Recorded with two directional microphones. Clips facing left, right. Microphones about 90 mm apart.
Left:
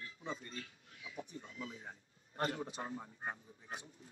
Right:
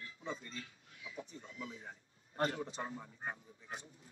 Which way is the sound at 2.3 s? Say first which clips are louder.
Right 2 dB; 30° right (ahead or behind).